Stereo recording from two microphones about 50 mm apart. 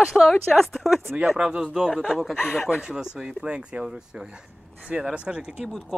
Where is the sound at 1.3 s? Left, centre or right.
Centre.